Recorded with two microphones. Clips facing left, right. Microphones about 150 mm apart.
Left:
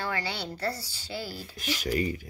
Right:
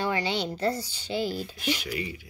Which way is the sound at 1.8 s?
45° left (ahead or behind).